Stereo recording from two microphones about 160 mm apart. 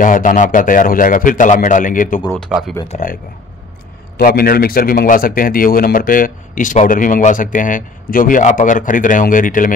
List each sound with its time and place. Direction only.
0.0 s a man's voice: 55° left (ahead or behind)
2.2 s speech: 10° left (ahead or behind)
2.9 s speech: 55° left (ahead or behind)
4.2 s a man's voice: 70° left (ahead or behind)